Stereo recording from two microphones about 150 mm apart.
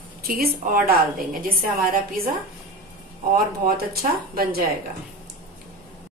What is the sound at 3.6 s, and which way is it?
Speech, 75° right (ahead or behind).